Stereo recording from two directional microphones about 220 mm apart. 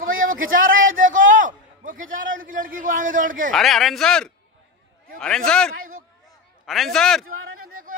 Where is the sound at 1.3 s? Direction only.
40° right (ahead or behind).